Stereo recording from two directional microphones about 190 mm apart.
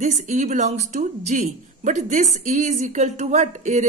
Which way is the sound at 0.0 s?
35° right (ahead or behind).